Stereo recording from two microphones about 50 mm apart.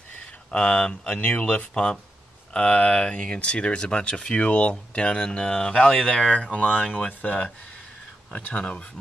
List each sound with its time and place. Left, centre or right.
0.5 s speech: left